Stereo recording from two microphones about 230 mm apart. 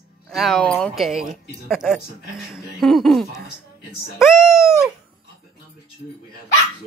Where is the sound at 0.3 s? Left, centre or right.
Centre.